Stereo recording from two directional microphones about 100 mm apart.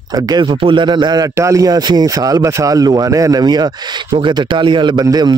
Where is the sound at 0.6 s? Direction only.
55° right (ahead or behind).